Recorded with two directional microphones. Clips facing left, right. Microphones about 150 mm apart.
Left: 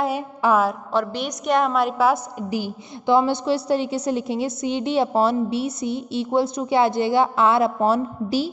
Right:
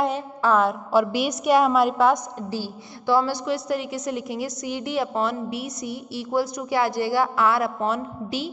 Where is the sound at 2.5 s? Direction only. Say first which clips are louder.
Left 6 dB; 20° left (ahead or behind).